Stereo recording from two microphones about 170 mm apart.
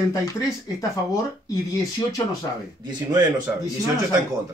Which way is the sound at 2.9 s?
25° right (ahead or behind).